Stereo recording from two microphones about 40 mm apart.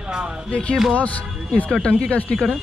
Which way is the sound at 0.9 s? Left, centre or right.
Left.